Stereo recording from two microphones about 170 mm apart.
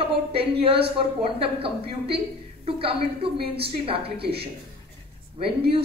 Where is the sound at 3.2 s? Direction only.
35° right (ahead or behind).